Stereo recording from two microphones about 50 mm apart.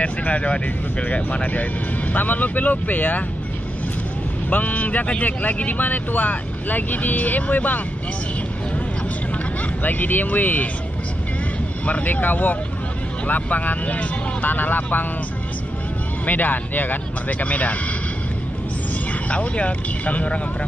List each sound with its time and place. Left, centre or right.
0.0 s speech: left
4.5 s speech: left
9.8 s speech: left
11.8 s speech: left
16.3 s speech: left
19.2 s speech: left